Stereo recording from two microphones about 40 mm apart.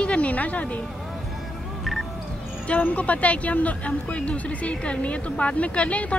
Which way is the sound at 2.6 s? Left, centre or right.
Left.